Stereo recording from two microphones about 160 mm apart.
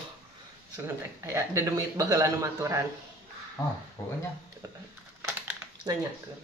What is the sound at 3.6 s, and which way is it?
Speech, 20° left (ahead or behind).